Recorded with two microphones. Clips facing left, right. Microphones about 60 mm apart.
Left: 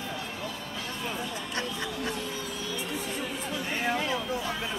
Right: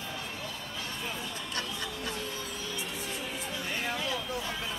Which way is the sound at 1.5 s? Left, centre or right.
Left.